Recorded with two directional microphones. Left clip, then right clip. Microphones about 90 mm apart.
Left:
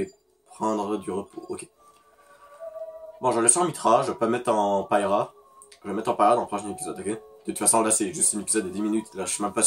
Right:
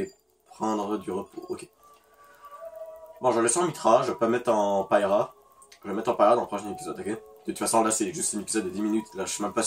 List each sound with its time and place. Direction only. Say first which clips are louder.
0.6 s speech: left 2 dB; 25° left (ahead or behind)
3.2 s speech: left 1 dB; 20° left (ahead or behind)